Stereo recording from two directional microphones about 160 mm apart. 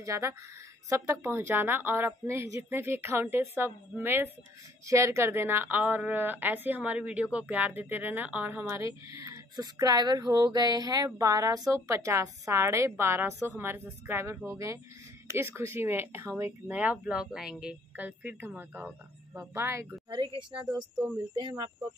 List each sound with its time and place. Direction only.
0.0 s a woman's voice: 20° right (ahead or behind)
20.1 s a woman's voice: 30° right (ahead or behind)